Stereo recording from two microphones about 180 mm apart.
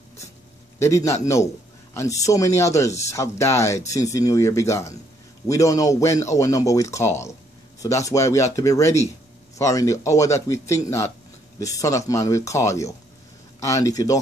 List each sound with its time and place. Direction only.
0.7 s speech: 15° left (ahead or behind)